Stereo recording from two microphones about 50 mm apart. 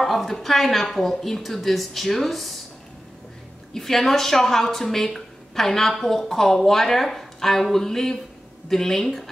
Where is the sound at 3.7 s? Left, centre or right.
Centre.